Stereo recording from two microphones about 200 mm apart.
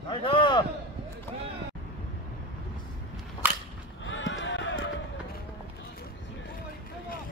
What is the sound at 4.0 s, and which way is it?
Run, 70° left (ahead or behind).